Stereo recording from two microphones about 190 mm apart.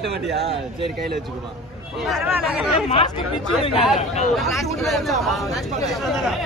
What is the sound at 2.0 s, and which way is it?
Speech, centre (ahead or behind).